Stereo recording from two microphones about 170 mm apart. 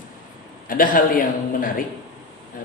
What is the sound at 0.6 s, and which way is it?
Speech, 55° left (ahead or behind).